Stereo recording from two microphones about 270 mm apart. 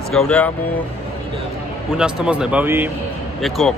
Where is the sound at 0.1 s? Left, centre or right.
Centre.